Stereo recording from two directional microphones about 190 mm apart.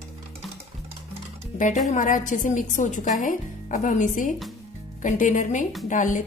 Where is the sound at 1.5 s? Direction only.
40° left (ahead or behind).